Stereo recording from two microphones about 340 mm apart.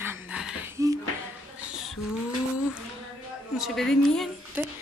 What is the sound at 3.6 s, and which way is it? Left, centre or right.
Speech, centre.